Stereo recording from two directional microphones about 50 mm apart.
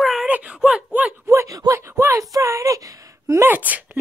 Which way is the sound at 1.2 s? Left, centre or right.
Right.